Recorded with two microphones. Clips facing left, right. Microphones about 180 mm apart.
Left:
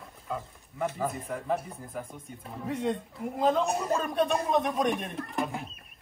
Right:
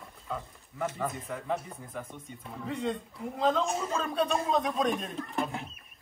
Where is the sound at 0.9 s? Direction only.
Centre (ahead or behind).